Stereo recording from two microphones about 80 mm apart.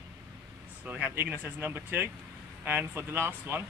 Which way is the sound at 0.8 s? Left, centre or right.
Centre.